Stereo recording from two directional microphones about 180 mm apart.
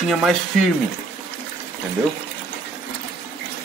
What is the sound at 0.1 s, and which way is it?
Speech, centre (ahead or behind).